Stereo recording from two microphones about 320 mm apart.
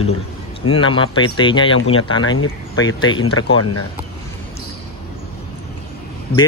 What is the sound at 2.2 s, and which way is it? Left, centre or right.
Speech, left.